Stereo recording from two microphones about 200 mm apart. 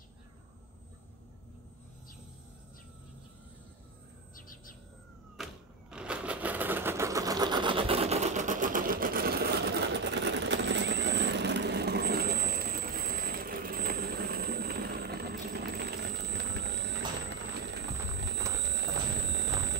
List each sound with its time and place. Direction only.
4.4 s bird: 45° left (ahead or behind)
5.4 s a sound: 5° right (ahead or behind); by 17.7 s 60° right (ahead or behind)
18.6 s alarm clock: 60° right (ahead or behind)